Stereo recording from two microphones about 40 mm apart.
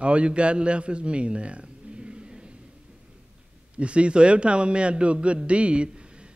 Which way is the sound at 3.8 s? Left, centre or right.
Right.